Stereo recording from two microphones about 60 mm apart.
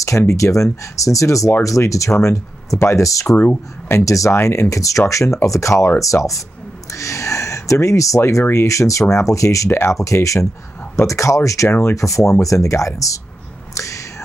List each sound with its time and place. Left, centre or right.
0.3 s speech: left
3.3 s speech: left
4.0 s speech: left
4.3 s speech: left
9.7 s speech: left
9.9 s speech: left
13.7 s whispering: left